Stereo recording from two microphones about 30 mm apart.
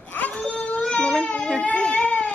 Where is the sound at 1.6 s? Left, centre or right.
Left.